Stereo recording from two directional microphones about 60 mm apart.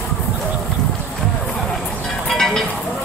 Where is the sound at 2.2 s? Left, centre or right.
Centre.